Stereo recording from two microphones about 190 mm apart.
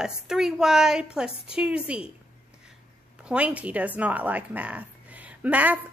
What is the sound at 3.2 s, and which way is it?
Speech, 5° right (ahead or behind).